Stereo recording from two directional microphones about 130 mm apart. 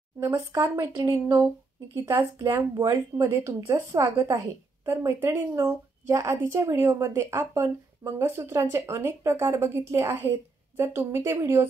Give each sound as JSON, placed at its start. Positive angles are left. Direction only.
{"t": 0.5, "sound": "a woman's voice", "side_deg": -25}
{"t": 4.8, "sound": "a woman's voice", "side_deg": -20}